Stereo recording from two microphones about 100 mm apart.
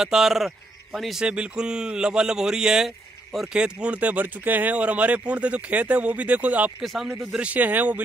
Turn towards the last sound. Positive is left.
turn(degrees=-15)  # may be behind; listen again after turning